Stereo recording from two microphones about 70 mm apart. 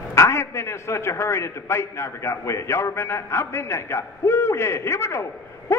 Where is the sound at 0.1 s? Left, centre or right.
Left.